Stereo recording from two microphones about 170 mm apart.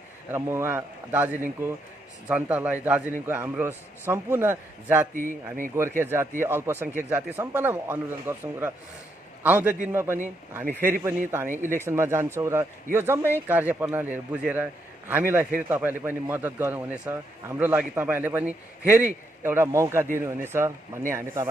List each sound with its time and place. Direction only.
0.3 s a man's voice: 15° right (ahead or behind)
5.1 s a man's voice: 50° right (ahead or behind)
5.8 s a man's voice: 15° right (ahead or behind)